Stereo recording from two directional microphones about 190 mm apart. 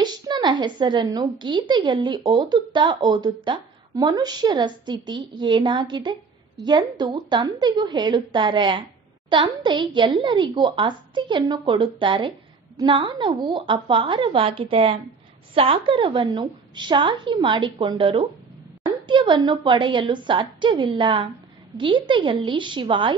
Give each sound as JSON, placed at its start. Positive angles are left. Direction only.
{"t": 0.0, "sound": "a woman's voice", "side_deg": -20}